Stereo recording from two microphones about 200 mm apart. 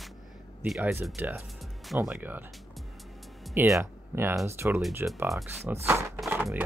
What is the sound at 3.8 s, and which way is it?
Speech, 10° right (ahead or behind).